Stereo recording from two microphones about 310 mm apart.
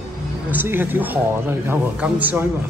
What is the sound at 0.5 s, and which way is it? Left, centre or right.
Speech, centre.